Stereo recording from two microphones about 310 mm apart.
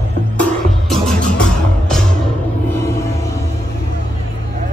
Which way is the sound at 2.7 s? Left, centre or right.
Centre.